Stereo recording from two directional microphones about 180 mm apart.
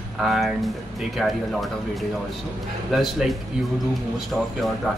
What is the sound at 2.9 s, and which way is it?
Speech, centre (ahead or behind).